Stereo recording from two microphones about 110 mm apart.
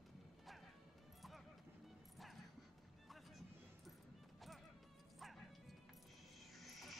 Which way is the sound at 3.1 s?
Centre (ahead or behind).